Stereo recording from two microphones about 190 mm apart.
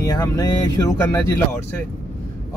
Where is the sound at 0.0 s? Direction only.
20° left (ahead or behind).